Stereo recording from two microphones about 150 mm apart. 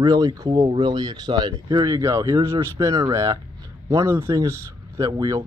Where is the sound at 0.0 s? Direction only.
25° right (ahead or behind).